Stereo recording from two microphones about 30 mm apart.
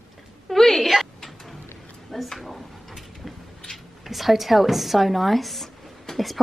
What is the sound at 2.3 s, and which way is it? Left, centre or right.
Speech, centre.